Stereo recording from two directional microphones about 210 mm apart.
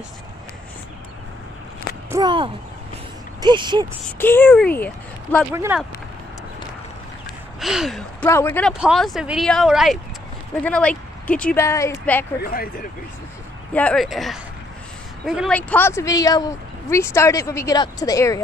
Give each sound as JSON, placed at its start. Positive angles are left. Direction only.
{"t": 2.0, "sound": "a sound", "side_deg": -20}
{"t": 3.3, "sound": "speech", "side_deg": -20}
{"t": 4.2, "sound": "speech", "side_deg": 10}
{"t": 5.5, "sound": "speech", "side_deg": -10}
{"t": 7.6, "sound": "speech", "side_deg": 0}
{"t": 8.3, "sound": "speech", "side_deg": 10}
{"t": 8.7, "sound": "speech", "side_deg": 0}
{"t": 12.4, "sound": "speech", "side_deg": 45}
{"t": 13.7, "sound": "speech", "side_deg": 5}